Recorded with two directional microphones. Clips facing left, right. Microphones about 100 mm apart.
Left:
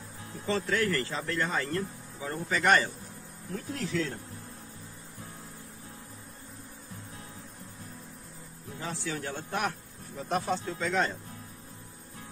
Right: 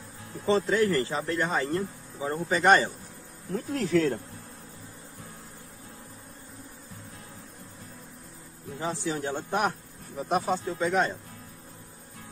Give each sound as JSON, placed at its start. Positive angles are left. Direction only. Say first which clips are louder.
{"t": 0.5, "sound": "speech", "louder": "right 5 dB", "side_deg": -20}
{"t": 3.5, "sound": "speech", "louder": "right 7 dB", "side_deg": -45}
{"t": 8.7, "sound": "speech", "louder": "right 5 dB", "side_deg": -20}